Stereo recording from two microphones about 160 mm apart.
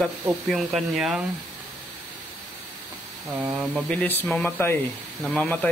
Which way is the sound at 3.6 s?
Centre (ahead or behind).